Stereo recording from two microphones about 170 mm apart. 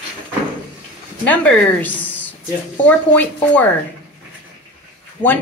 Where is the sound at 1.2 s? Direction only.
10° left (ahead or behind).